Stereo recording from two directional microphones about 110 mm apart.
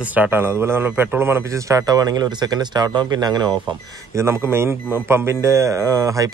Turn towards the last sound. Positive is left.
turn(degrees=-30)  # may be behind; listen again after turning